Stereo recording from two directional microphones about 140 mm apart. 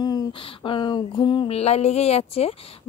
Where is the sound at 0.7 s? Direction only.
30° left (ahead or behind).